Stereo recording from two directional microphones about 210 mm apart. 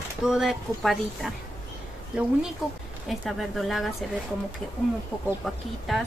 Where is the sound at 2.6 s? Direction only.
Centre (ahead or behind).